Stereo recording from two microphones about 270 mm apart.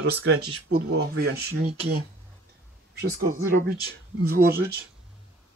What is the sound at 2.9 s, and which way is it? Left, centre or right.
Speech, right.